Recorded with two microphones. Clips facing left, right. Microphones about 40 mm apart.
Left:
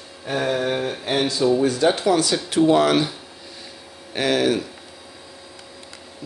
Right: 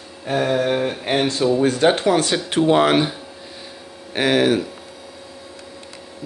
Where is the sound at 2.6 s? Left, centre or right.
Right.